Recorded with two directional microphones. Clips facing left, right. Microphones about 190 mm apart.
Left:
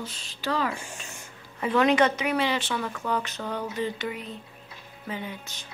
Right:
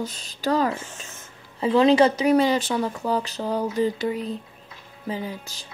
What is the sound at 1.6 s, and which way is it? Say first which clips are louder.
Speech: right 5 dB; 30° right (ahead or behind).